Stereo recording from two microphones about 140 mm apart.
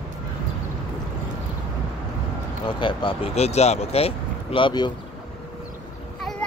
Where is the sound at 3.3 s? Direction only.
50° left (ahead or behind); by 4.9 s 35° left (ahead or behind).